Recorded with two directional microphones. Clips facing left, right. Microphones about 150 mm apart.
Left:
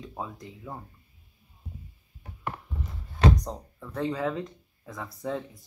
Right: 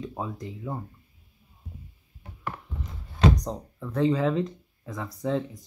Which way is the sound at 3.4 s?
Centre (ahead or behind).